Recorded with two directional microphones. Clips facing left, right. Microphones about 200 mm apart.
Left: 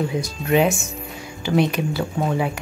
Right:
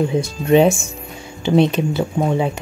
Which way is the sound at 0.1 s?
25° right (ahead or behind).